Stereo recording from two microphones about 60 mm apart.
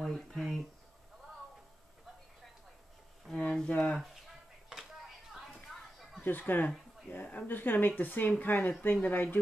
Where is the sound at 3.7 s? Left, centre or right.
Centre.